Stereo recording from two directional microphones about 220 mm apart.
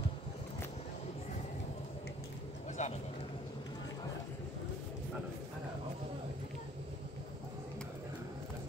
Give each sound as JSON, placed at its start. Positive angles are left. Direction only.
{"t": 2.8, "sound": "vehicle", "side_deg": 30}